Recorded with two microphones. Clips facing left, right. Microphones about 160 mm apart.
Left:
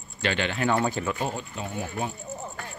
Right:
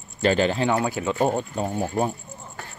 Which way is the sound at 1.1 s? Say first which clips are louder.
Right 8 dB; 45° right (ahead or behind).